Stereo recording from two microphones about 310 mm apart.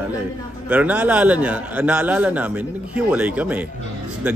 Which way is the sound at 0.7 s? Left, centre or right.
Centre.